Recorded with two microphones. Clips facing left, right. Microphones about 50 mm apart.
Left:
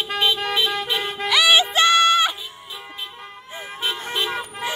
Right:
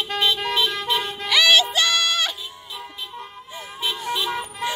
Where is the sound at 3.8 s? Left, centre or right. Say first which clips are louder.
Even; left.